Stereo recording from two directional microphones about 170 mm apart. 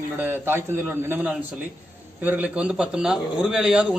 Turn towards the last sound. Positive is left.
turn(degrees=-5)  # may be behind; listen again after turning